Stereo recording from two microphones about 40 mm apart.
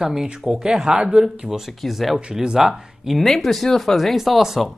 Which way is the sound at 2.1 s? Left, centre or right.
Centre.